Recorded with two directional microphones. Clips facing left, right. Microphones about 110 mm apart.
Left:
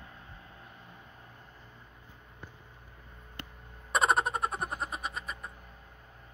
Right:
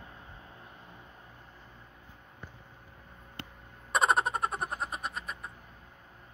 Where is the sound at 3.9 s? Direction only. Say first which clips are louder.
Even; centre (ahead or behind).